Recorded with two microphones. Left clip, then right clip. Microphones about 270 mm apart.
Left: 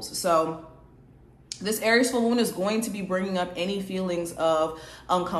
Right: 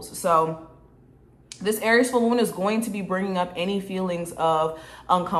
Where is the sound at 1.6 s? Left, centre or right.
Right.